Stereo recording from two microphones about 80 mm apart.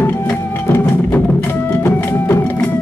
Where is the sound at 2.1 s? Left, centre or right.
Left.